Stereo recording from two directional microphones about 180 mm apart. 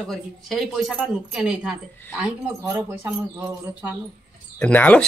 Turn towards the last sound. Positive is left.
turn(degrees=10)  # may be behind; listen again after turning